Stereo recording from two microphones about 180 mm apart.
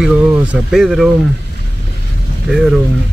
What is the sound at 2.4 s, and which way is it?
Speech, centre (ahead or behind).